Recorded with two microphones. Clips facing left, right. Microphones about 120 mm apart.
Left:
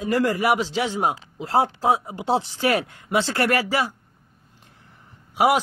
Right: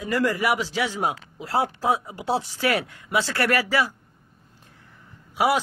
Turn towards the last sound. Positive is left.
turn(degrees=20)  # may be behind; listen again after turning